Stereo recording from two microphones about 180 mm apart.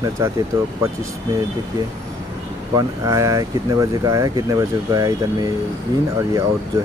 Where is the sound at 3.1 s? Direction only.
20° right (ahead or behind).